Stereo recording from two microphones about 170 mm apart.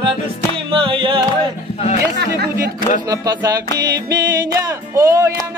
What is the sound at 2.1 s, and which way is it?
Chatter, 65° right (ahead or behind).